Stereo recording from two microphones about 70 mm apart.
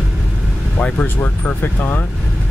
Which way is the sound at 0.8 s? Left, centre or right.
Centre.